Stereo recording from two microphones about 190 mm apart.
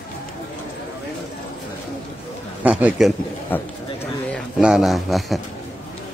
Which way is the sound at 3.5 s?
10° left (ahead or behind).